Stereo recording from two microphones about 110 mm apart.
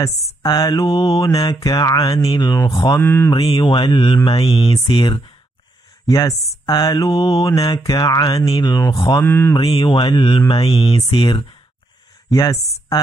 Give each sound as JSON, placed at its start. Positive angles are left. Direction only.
{"t": 0.0, "sound": "mantra", "side_deg": 35}
{"t": 2.7, "sound": "speech", "side_deg": 45}
{"t": 3.0, "sound": "mantra", "side_deg": 20}
{"t": 3.5, "sound": "speech", "side_deg": 45}
{"t": 4.6, "sound": "speech", "side_deg": 45}
{"t": 6.0, "sound": "mantra", "side_deg": 30}
{"t": 9.2, "sound": "mantra", "side_deg": 20}
{"t": 9.6, "sound": "speech", "side_deg": 50}
{"t": 12.3, "sound": "a woman's voice", "side_deg": 35}